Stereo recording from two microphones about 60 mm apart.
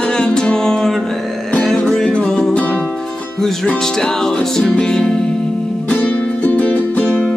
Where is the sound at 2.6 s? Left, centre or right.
Left.